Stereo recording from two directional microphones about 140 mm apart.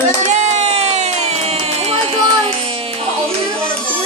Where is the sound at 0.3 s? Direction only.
55° right (ahead or behind).